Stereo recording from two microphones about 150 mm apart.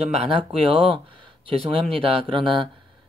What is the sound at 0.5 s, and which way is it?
Speech, 35° right (ahead or behind).